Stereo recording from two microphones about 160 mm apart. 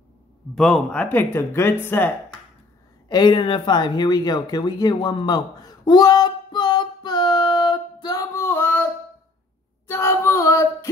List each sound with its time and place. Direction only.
0.6 s speech: 5° left (ahead or behind)
3.1 s a sound: 25° left (ahead or behind)
9.8 s female singing: 15° left (ahead or behind)